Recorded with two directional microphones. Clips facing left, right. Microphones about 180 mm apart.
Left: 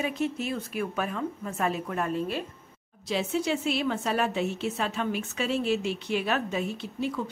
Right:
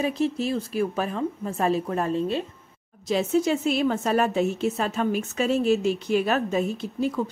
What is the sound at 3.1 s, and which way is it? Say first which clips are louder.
A woman's voice: right 5 dB; 45° right (ahead or behind).